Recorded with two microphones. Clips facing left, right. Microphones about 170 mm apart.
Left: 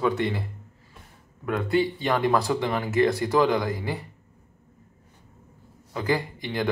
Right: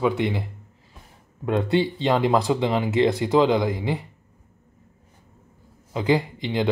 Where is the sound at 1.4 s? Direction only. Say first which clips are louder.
Right 2 dB; 25° right (ahead or behind).